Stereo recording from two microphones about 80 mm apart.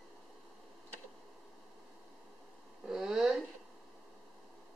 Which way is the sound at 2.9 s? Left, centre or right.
Centre.